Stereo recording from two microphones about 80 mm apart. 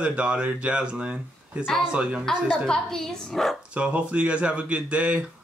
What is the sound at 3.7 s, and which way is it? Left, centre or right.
Speech, centre.